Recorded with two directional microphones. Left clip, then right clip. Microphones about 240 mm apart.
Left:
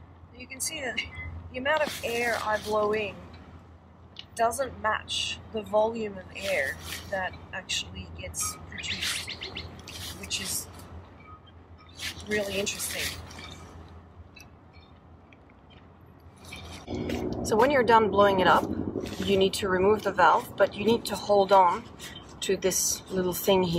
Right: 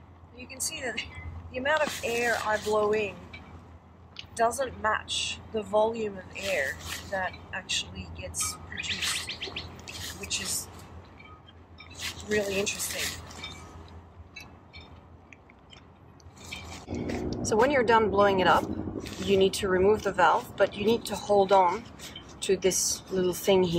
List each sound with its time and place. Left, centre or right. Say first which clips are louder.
0.4 s a woman's voice: left 1 dB; centre
4.4 s a woman's voice: even; centre
9.3 s bird: right 1 dB; right
9.8 s drip: right 1 dB; centre
11.9 s a sound: right 1 dB; centre
17.6 s speech: left 2 dB; centre